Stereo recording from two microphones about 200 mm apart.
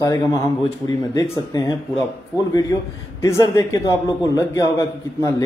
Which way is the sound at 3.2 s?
15° left (ahead or behind).